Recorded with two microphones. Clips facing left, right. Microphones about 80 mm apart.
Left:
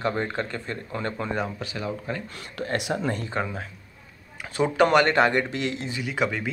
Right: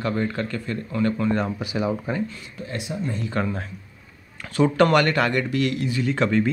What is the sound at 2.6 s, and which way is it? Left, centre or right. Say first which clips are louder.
Speech: left 3 dB; left.